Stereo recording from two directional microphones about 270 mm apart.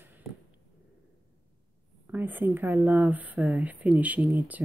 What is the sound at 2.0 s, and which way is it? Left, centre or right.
Speech, centre.